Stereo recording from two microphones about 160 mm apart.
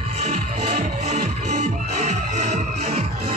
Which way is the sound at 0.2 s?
45° right (ahead or behind).